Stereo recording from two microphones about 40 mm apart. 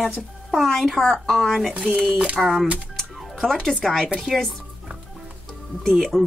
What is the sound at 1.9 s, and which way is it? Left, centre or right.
Speech, right.